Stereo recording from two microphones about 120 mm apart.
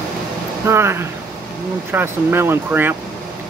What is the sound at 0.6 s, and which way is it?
Speech, 20° right (ahead or behind).